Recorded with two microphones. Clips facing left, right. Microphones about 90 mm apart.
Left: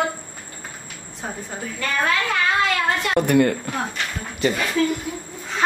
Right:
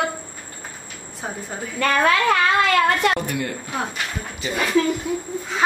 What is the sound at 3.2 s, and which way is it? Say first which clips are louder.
Speech: left 10 dB; 55° left (ahead or behind).